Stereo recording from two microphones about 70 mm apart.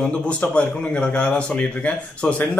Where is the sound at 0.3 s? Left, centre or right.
Centre.